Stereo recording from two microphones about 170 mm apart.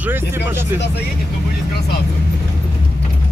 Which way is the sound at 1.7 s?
70° left (ahead or behind).